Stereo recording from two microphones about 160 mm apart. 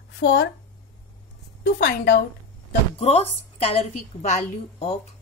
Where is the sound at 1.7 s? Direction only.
75° left (ahead or behind).